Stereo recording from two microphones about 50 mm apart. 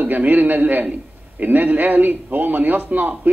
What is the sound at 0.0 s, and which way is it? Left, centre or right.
A man's voice, right.